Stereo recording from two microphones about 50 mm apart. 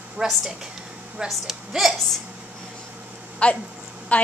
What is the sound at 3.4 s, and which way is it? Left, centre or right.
Speech, left.